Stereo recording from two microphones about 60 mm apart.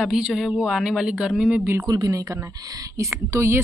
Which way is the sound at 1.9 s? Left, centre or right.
Right.